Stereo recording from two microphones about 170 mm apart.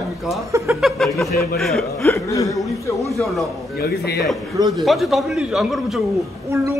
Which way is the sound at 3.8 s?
70° left (ahead or behind).